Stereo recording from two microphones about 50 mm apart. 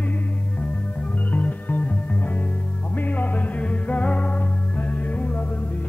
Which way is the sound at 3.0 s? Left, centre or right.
Left.